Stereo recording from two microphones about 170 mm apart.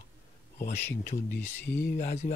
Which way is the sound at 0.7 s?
15° left (ahead or behind).